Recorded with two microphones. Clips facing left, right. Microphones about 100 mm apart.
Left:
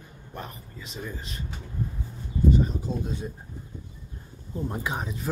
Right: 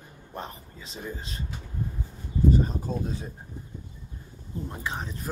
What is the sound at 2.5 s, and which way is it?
Speech, 40° right (ahead or behind).